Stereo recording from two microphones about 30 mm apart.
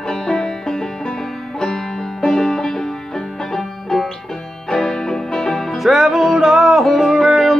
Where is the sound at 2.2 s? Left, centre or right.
Centre.